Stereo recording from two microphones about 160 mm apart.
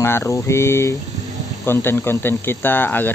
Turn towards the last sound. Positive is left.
turn(degrees=10)  # may be behind; listen again after turning